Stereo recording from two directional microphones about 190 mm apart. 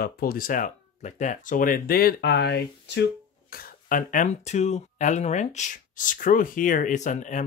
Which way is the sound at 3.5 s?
50° left (ahead or behind).